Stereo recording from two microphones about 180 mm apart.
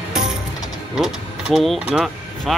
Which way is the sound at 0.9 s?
5° right (ahead or behind).